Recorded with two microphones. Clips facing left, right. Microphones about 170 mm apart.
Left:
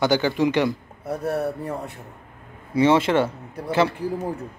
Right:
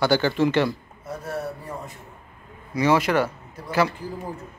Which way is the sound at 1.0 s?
65° left (ahead or behind).